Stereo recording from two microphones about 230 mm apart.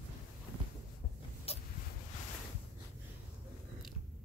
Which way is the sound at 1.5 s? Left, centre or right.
Left.